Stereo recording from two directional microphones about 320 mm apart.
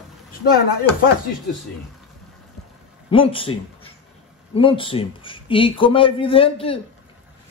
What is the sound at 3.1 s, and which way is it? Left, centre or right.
A man's voice, centre.